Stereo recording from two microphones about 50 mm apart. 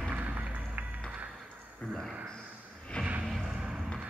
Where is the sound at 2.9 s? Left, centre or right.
Left.